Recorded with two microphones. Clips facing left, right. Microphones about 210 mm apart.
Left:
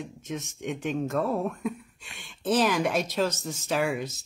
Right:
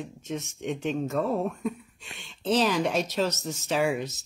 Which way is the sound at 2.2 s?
50° left (ahead or behind).